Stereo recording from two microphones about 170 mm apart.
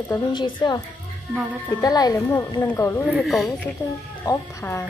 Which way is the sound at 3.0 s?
Centre (ahead or behind).